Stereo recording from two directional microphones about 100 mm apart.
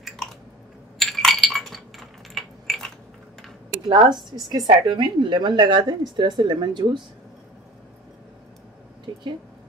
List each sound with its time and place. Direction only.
0.9 s chink: centre (ahead or behind)
3.9 s a woman's voice: 45° right (ahead or behind)
9.1 s speech: 40° right (ahead or behind)